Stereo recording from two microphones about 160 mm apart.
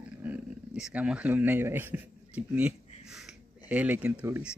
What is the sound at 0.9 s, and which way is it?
Speech, 5° right (ahead or behind).